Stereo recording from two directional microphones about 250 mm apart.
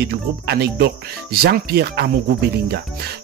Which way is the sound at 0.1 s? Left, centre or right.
Right.